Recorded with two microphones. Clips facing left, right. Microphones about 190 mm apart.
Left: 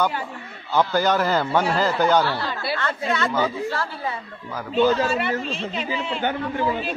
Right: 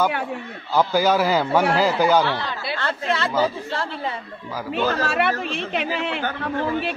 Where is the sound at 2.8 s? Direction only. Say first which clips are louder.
Right 2 dB; 30° right (ahead or behind).